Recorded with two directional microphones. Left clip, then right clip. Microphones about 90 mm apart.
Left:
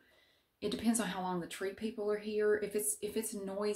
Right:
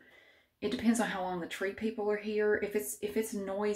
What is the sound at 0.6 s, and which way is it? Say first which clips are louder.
Speech: right 4 dB; 25° left (ahead or behind).